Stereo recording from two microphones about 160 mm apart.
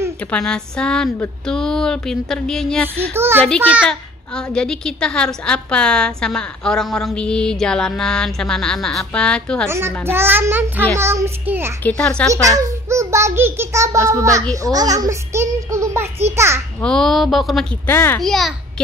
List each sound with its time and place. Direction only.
0.3 s a woman's voice: 5° left (ahead or behind)
3.1 s a child's voice: 15° right (ahead or behind)
3.9 s a woman's voice: 5° left (ahead or behind)
9.7 s a child's voice: 15° right (ahead or behind)
11.8 s speech: 5° left (ahead or behind)
12.3 s a child's voice: 20° right (ahead or behind)
16.8 s a woman's voice: 5° left (ahead or behind)
17.8 s speech: 15° left (ahead or behind)
18.2 s a woman's voice: centre (ahead or behind)